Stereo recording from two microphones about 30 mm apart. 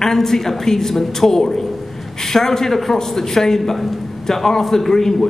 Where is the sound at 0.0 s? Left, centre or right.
Centre.